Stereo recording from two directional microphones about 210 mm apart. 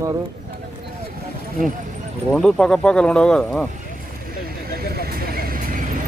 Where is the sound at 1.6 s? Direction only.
40° right (ahead or behind).